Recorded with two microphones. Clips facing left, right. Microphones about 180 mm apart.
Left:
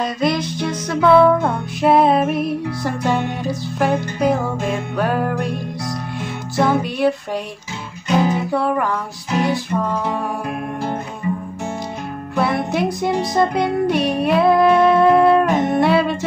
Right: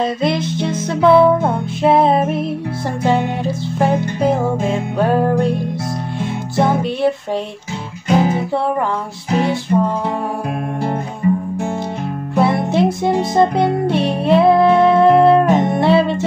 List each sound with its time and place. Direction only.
0.0 s music: 25° right (ahead or behind)
6.5 s music: 25° right (ahead or behind)
8.3 s music: 25° right (ahead or behind)
12.4 s music: 25° right (ahead or behind)